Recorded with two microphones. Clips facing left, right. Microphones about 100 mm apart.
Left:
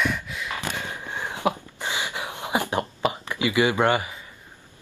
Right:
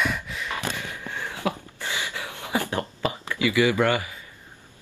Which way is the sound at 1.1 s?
20° left (ahead or behind).